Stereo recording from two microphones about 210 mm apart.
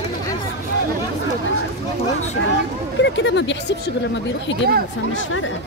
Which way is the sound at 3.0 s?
60° left (ahead or behind).